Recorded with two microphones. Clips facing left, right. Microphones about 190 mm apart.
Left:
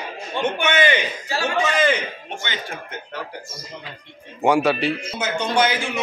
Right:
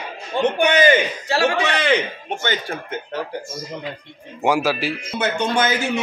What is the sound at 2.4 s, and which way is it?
Speech, 45° right (ahead or behind).